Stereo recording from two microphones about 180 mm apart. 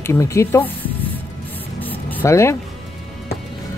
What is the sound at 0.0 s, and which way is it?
Speech, 15° left (ahead or behind).